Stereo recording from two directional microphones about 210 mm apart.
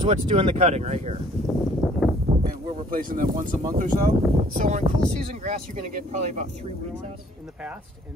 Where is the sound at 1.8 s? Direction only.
5° right (ahead or behind).